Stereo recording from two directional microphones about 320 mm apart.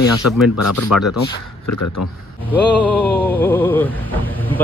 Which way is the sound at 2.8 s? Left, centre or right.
Centre.